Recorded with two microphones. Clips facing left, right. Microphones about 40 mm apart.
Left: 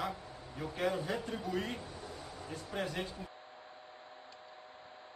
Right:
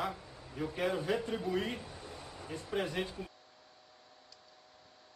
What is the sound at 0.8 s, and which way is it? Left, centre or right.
Speech, centre.